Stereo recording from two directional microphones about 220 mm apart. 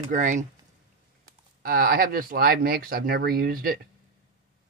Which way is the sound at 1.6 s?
40° right (ahead or behind).